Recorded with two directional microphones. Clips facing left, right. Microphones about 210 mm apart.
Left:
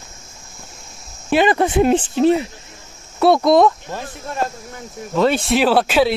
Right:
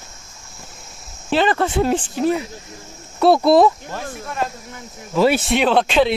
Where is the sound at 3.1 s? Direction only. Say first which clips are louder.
Even; centre (ahead or behind).